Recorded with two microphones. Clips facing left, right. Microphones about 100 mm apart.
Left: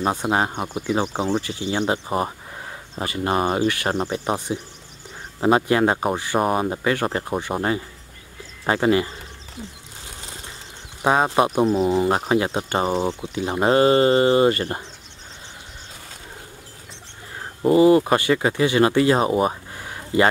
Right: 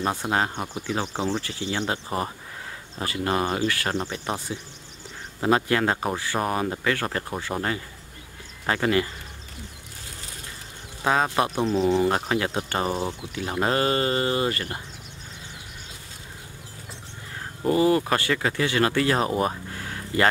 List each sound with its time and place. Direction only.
0.0 s speech: 15° left (ahead or behind)
11.1 s speech: 20° left (ahead or behind)
11.6 s speech: 5° left (ahead or behind)
12.4 s speech: 25° left (ahead or behind)
17.6 s speech: 15° left (ahead or behind)
19.5 s a sound: 15° left (ahead or behind)